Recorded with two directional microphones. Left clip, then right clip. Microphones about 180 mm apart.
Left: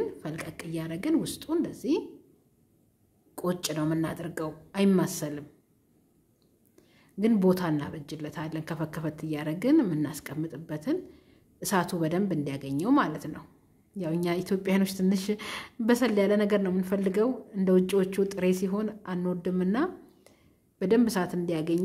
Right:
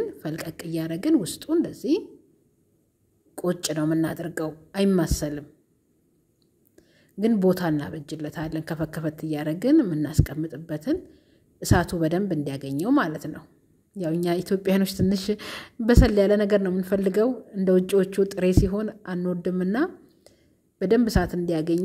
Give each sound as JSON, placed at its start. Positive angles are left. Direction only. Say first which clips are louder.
{"t": 0.0, "sound": "speech", "louder": "right 3 dB", "side_deg": -25}
{"t": 3.3, "sound": "speech", "louder": "right 4 dB", "side_deg": -20}
{"t": 6.7, "sound": "a woman's voice", "louder": "right 2 dB", "side_deg": -15}